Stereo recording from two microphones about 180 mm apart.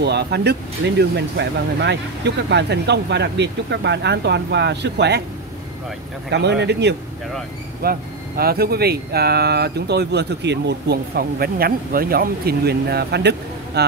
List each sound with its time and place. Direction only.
0.0 s speech: 70° right (ahead or behind)
6.3 s speech: 70° right (ahead or behind)
7.8 s speech: 55° right (ahead or behind)